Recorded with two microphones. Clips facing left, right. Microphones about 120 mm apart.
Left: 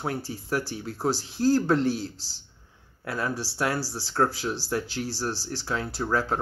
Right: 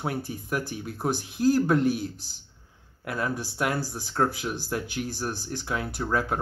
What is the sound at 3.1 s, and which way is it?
Speech, 20° right (ahead or behind).